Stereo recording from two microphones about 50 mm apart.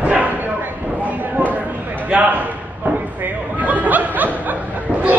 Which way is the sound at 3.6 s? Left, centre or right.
Right.